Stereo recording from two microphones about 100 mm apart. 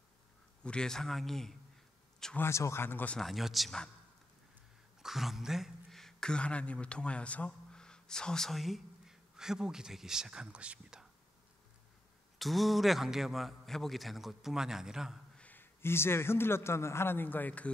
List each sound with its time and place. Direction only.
0.7 s a man's voice: 5° left (ahead or behind)
2.3 s speech: 25° left (ahead or behind)
3.2 s a man's voice: centre (ahead or behind)
5.0 s a woman's voice: centre (ahead or behind)
12.4 s a man's voice: centre (ahead or behind)
15.3 s a man's voice: 15° left (ahead or behind)